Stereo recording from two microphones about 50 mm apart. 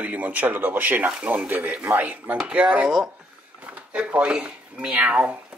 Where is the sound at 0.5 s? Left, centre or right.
Right.